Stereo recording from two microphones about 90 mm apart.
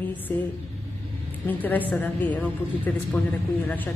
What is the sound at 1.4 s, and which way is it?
Speech, 20° left (ahead or behind).